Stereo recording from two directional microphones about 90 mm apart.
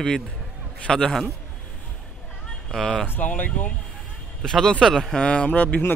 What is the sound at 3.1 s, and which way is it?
Speech, 20° left (ahead or behind).